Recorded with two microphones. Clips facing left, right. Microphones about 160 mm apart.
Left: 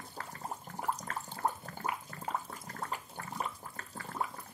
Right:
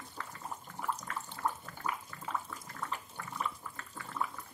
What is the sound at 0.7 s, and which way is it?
Water, 40° left (ahead or behind).